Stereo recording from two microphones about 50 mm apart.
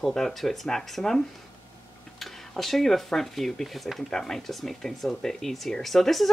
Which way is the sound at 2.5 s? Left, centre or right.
Centre.